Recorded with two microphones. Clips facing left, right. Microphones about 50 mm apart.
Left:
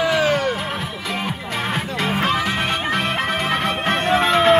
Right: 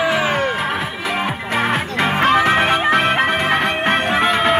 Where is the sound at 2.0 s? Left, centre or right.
Right.